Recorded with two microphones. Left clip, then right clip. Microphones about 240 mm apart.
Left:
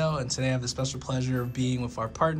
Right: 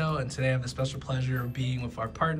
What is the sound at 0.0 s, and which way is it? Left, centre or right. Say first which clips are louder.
Speech: left 2 dB; centre.